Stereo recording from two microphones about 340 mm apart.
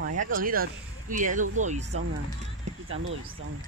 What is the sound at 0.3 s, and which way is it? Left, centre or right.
Speech, right.